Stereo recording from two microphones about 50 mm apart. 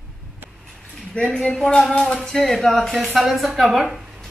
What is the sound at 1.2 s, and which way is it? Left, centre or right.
Speech, left.